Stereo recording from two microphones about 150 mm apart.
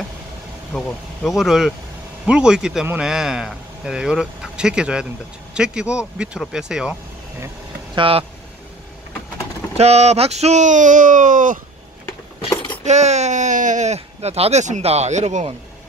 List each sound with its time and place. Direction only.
0.7 s a man's voice: 5° left (ahead or behind)
7.9 s speech: 35° right (ahead or behind)
9.8 s speech: 45° right (ahead or behind)
12.8 s speech: 50° right (ahead or behind)